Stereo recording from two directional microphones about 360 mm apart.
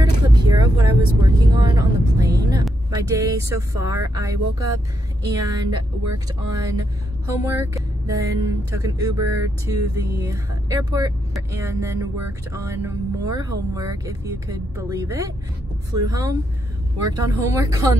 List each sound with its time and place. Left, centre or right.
0.0 s vehicle: centre
5.2 s speech: centre